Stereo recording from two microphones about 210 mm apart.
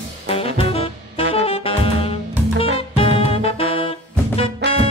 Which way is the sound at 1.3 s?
25° left (ahead or behind).